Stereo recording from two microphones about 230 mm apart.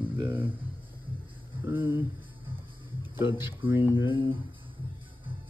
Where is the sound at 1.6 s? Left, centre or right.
Centre.